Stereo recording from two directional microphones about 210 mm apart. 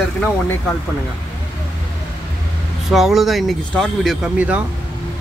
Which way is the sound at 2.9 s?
Centre (ahead or behind).